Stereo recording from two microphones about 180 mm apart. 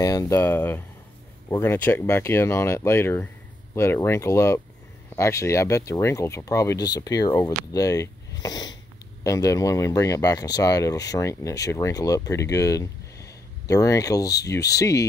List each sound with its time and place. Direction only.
0.0 s speech: 20° left (ahead or behind)